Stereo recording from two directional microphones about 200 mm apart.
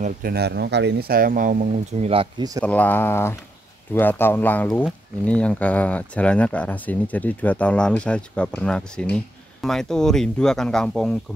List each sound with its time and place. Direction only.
0.2 s speech: 55° right (ahead or behind); by 2.6 s 20° right (ahead or behind)
2.6 s speech: 10° left (ahead or behind)